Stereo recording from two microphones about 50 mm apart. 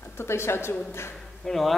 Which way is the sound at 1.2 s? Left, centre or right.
Centre.